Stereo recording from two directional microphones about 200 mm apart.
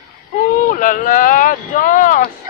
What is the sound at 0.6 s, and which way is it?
Speech, 40° left (ahead or behind).